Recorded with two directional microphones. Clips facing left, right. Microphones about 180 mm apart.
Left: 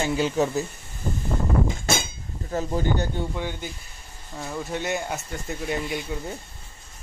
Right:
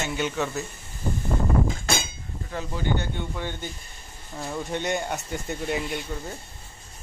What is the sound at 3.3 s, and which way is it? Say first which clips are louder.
Speech: left 2 dB; 10° left (ahead or behind).